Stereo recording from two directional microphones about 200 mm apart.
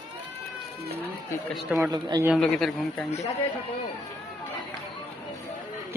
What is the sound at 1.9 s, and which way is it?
Speech, 20° right (ahead or behind).